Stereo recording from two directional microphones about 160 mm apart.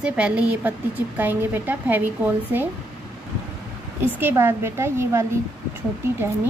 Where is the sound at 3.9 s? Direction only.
15° right (ahead or behind).